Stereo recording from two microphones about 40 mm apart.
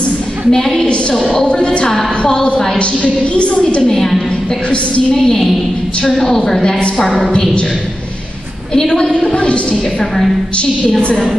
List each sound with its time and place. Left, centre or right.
0.5 s a woman's voice: centre
1.9 s a woman's voice: centre
2.3 s a woman's voice: left
3.9 s a woman's voice: centre
8.7 s a woman's voice: centre